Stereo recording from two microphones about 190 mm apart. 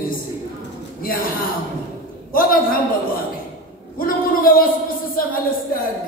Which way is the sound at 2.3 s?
50° left (ahead or behind).